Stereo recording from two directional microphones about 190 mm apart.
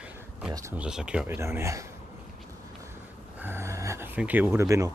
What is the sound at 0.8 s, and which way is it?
Speech, 5° right (ahead or behind).